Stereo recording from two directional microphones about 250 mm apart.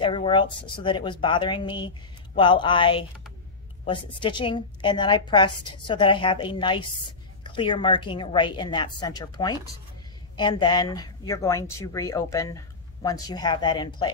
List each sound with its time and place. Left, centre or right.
0.0 s a woman's voice: centre